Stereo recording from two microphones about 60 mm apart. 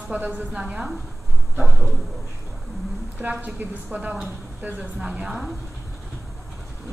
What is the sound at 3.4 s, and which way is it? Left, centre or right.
A woman's voice, right.